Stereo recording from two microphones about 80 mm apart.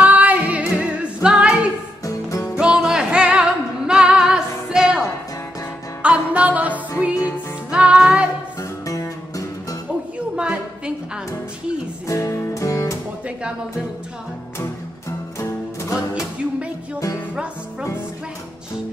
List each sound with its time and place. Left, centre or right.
0.0 s music: right
2.0 s music: left
2.6 s music: centre
6.0 s music: centre
7.7 s music: centre
8.8 s music: left
10.3 s a sound: centre
12.1 s music: left
15.3 s music: left